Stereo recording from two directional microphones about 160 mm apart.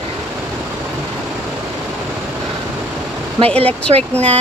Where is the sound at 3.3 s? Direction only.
40° right (ahead or behind).